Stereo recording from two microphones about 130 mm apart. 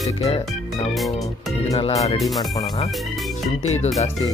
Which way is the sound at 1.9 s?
25° left (ahead or behind).